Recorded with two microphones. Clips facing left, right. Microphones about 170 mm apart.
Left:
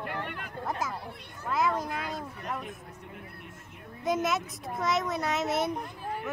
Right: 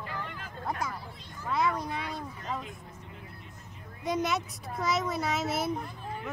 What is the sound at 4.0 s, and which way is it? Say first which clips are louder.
A child's voice: left 1 dB; centre (ahead or behind).